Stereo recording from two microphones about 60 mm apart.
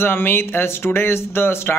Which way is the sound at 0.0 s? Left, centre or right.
Left.